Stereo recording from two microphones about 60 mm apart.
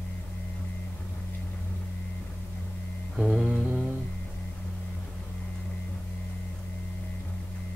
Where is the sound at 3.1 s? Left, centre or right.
Centre.